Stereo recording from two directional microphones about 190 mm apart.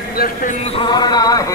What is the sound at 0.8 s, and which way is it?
Speech, 20° left (ahead or behind).